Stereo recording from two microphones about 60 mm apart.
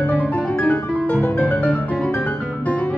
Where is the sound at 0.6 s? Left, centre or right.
Left.